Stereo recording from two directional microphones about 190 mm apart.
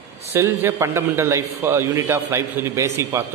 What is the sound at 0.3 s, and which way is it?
A man's voice, 10° right (ahead or behind).